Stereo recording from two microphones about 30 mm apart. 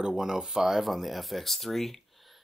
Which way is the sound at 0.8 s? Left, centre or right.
Centre.